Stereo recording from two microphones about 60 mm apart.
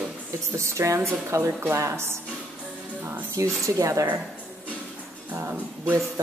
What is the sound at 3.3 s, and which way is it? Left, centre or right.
Speech, right.